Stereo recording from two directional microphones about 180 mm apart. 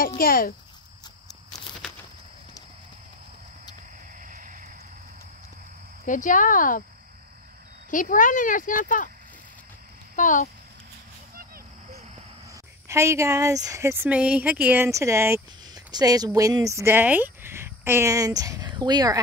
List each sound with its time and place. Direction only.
0.2 s speech: 55° left (ahead or behind)
4.2 s a sound: 45° right (ahead or behind)
6.0 s speech: 45° left (ahead or behind)
7.9 s speech: 45° left (ahead or behind)
10.1 s speech: 45° left (ahead or behind)
11.3 s a sound: 55° right (ahead or behind)
12.8 s a woman's voice: 15° right (ahead or behind)